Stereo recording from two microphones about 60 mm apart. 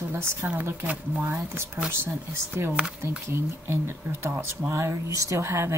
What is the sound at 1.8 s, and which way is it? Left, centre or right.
Speech, right.